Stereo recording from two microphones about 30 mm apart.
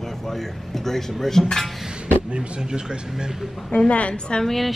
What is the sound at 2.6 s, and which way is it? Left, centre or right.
Speech, right.